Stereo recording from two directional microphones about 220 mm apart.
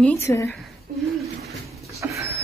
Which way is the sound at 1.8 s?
15° right (ahead or behind).